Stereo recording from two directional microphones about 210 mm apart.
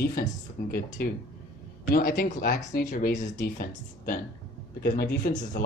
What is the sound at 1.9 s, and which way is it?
Speech, 45° left (ahead or behind).